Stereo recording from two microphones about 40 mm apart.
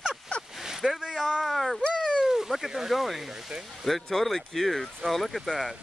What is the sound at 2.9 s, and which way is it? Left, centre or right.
Speech, centre.